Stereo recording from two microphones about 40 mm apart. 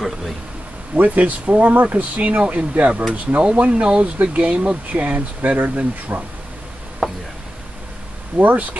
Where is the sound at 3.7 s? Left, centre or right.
Right.